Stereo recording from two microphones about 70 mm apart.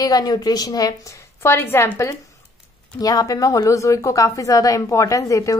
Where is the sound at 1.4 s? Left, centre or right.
Left.